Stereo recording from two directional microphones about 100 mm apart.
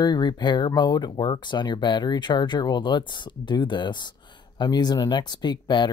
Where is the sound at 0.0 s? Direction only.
45° left (ahead or behind).